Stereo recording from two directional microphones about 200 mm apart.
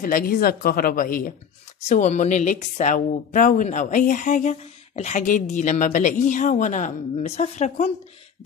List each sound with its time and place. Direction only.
0.0 s a woman's voice: 45° left (ahead or behind)